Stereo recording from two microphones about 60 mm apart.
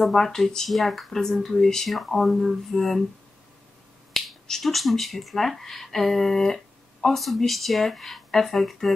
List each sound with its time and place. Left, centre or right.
0.0 s speech: centre
4.1 s speech: centre